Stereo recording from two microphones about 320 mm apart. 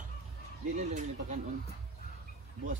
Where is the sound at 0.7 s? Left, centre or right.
Right.